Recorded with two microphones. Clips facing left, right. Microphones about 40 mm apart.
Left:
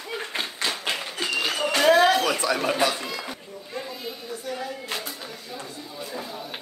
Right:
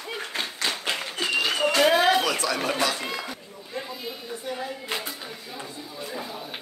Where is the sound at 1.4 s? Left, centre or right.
Centre.